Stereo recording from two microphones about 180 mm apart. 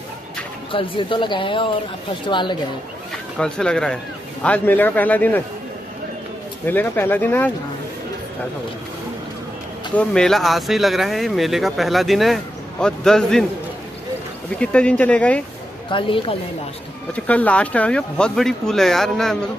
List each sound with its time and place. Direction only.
0.7 s speech: 30° left (ahead or behind)
3.3 s a man's voice: 5° left (ahead or behind)
6.6 s a man's voice: 10° left (ahead or behind)
9.9 s speech: 5° left (ahead or behind)
14.6 s a man's voice: 5° left (ahead or behind)
15.9 s speech: 30° left (ahead or behind)
17.1 s speech: 10° left (ahead or behind)